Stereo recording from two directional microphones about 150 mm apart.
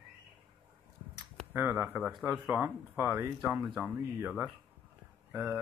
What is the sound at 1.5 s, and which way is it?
Speech, 15° right (ahead or behind).